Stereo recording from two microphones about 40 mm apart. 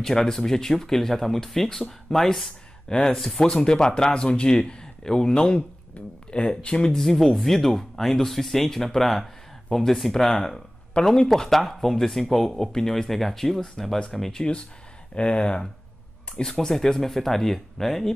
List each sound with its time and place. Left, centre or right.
0.0 s speech: centre
3.3 s speech: centre
6.6 s speech: left
6.9 s speech: centre
15.1 s speech: left
16.4 s speech: centre